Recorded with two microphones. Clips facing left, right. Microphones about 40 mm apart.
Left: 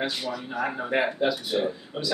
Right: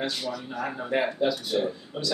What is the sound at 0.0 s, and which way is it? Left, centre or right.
Speech, centre.